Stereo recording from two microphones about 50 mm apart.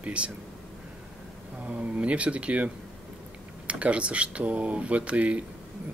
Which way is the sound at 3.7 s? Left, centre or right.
Right.